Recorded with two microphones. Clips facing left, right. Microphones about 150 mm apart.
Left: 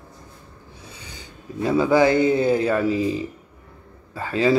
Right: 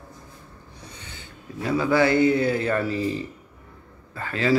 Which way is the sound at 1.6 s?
25° left (ahead or behind).